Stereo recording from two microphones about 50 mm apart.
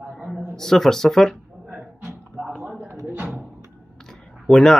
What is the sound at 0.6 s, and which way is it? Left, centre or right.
Speech, centre.